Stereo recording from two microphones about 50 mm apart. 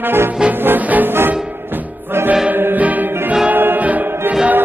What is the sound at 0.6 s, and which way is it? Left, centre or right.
Music, right.